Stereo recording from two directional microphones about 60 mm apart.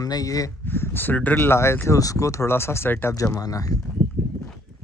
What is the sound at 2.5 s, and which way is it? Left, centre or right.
Speech, left.